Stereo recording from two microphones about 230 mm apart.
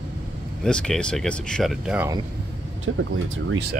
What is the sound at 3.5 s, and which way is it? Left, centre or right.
Speech, right.